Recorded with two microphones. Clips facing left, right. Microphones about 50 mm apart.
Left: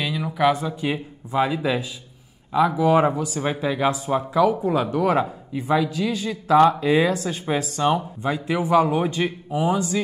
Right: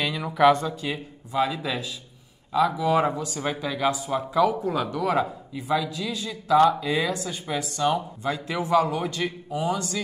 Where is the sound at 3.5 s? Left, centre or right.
Left.